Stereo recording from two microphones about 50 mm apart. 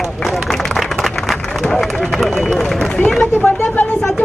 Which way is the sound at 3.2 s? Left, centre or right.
Left.